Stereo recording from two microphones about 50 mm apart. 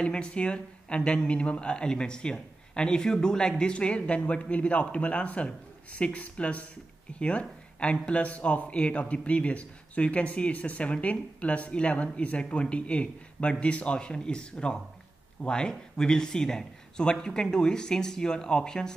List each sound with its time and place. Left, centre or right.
0.0 s a man's voice: centre